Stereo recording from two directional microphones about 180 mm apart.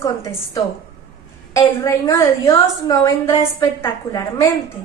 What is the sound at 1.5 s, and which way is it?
A woman's voice, 15° left (ahead or behind).